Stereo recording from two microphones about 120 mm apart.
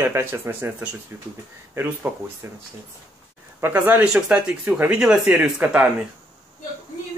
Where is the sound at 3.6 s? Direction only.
15° right (ahead or behind).